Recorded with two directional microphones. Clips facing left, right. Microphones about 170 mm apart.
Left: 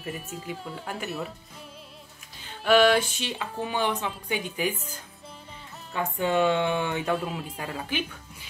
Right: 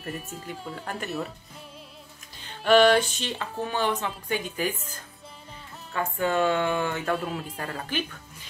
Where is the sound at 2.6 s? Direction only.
5° left (ahead or behind).